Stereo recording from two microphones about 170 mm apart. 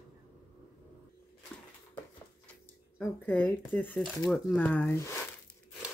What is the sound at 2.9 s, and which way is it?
Speech, 10° left (ahead or behind).